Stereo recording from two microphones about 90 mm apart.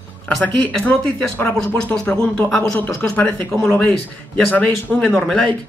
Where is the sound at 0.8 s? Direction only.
15° left (ahead or behind).